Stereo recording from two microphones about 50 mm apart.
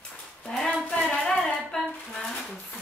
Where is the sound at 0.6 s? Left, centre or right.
Centre.